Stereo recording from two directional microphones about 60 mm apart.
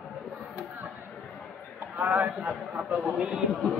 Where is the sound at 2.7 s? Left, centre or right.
Right.